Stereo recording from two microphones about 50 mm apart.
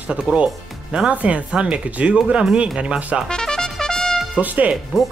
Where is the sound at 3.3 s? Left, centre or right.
Centre.